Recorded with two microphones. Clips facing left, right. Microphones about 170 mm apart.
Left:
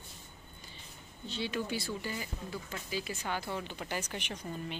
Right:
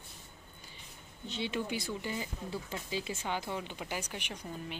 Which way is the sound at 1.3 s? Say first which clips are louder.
Even; 20° right (ahead or behind).